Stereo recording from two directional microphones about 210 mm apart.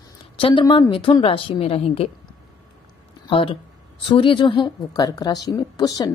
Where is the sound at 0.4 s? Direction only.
25° left (ahead or behind).